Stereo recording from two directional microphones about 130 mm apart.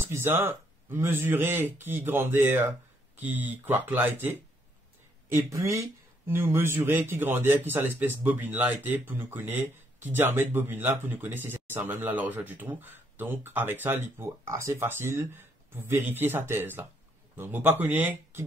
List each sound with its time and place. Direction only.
0.0 s speech: 20° right (ahead or behind)